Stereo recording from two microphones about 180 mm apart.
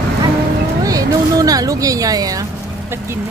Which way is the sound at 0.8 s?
20° right (ahead or behind).